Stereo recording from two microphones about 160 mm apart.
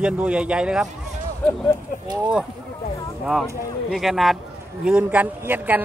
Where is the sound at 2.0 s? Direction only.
25° right (ahead or behind).